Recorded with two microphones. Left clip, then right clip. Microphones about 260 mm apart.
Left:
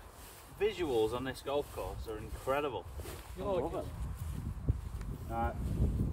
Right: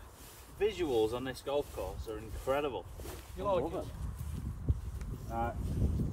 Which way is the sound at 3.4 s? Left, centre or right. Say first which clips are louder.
Right 3 dB; centre.